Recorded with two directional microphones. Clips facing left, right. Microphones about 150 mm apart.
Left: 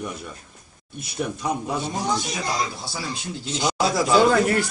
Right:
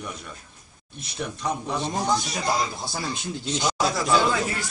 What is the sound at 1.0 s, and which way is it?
Speech, 10° left (ahead or behind).